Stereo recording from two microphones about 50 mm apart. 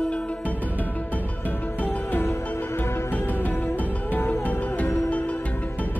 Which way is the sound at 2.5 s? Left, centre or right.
Left.